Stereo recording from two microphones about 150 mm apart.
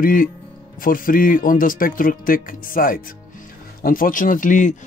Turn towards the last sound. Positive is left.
turn(degrees=60)  # may be behind; listen again after turning